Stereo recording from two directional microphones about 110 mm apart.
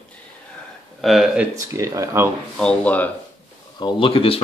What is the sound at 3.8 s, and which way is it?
Speech, 45° left (ahead or behind).